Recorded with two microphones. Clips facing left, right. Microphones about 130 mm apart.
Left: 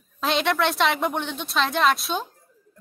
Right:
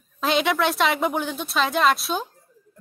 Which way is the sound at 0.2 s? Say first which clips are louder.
Right 1 dB; centre (ahead or behind).